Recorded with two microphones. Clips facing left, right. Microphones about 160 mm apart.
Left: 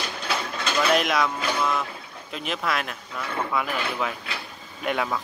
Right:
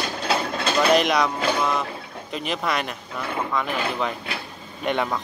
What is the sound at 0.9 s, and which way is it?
Speech, centre (ahead or behind).